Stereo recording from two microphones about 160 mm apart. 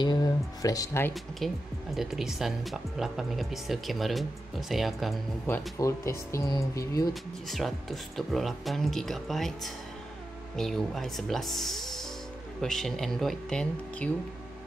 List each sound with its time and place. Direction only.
0.0 s music: 25° left (ahead or behind)
1.4 s speech: centre (ahead or behind)
5.5 s speech: 20° left (ahead or behind)
7.4 s speech: centre (ahead or behind)